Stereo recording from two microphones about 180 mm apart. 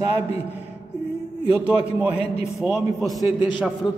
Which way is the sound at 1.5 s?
10° right (ahead or behind).